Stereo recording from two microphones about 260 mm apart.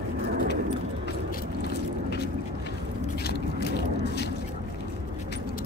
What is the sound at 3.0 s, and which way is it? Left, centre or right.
Scrape, left.